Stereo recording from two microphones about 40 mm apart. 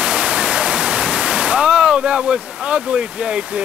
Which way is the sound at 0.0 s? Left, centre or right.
Right.